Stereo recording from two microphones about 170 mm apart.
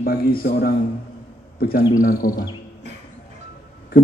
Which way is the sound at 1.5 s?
60° left (ahead or behind).